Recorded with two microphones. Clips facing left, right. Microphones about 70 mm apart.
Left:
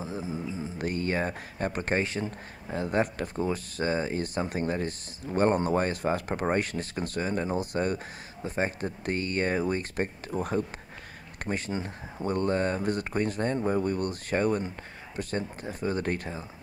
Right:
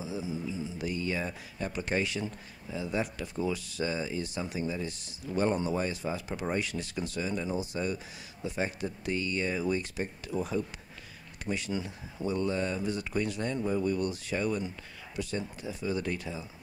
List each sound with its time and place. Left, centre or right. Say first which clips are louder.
0.0 s speech: left 1 dB; left
2.7 s speech: left 5 dB; left